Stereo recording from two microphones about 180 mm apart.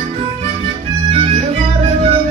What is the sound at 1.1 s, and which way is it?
Music, 35° right (ahead or behind).